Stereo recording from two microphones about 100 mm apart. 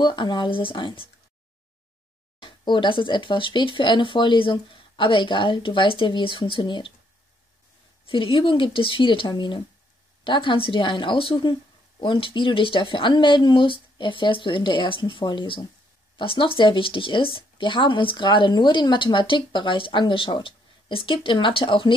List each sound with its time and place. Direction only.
0.0 s speech: 50° left (ahead or behind)
2.4 s speech: 50° left (ahead or behind)
8.1 s speech: 60° left (ahead or behind)